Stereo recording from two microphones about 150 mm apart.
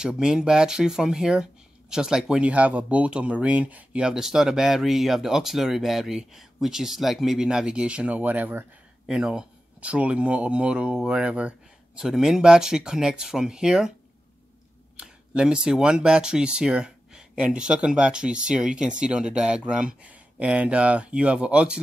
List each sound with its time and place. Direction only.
0.1 s speech: 5° right (ahead or behind)
15.0 s speech: 5° right (ahead or behind)